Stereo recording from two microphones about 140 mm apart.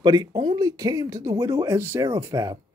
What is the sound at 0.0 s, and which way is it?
Speech, 30° right (ahead or behind).